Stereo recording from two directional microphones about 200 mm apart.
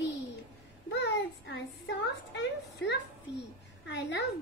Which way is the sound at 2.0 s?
60° left (ahead or behind).